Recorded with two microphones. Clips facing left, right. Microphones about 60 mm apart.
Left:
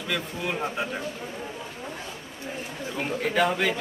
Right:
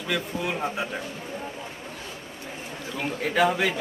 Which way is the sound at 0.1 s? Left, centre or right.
Centre.